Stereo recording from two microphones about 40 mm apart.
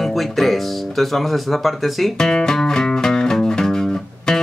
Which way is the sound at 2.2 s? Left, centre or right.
Centre.